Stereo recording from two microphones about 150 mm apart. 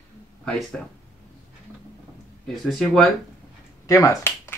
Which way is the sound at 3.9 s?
20° left (ahead or behind).